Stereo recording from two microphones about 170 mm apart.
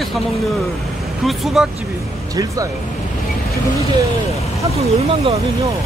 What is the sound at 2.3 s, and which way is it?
Speech, 20° right (ahead or behind).